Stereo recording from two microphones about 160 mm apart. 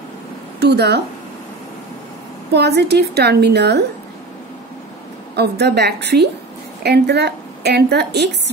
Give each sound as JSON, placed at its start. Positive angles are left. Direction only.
{"t": 0.6, "sound": "a woman's voice", "side_deg": -90}
{"t": 2.5, "sound": "a woman's voice", "side_deg": -90}
{"t": 5.3, "sound": "a woman's voice", "side_deg": -90}